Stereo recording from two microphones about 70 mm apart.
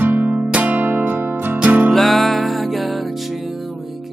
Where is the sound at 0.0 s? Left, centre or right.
Right.